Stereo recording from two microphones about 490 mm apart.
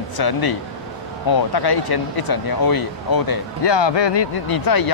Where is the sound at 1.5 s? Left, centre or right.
Left.